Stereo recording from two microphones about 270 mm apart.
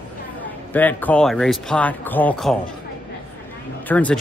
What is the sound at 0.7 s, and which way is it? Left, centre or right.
Speech, centre.